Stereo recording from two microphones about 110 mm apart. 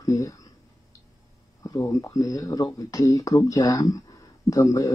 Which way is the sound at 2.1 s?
30° left (ahead or behind).